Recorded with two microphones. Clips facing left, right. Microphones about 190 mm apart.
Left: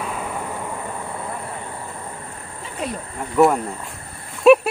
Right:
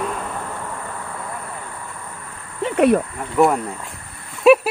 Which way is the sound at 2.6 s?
65° right (ahead or behind).